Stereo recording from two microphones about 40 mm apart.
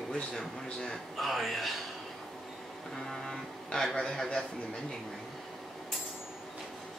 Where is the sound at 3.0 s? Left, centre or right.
Centre.